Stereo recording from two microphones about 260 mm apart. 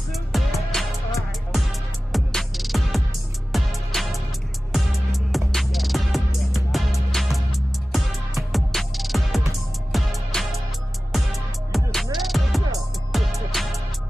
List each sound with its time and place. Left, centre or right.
0.1 s music: centre